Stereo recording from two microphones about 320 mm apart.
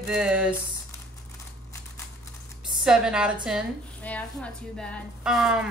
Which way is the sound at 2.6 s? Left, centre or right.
Centre.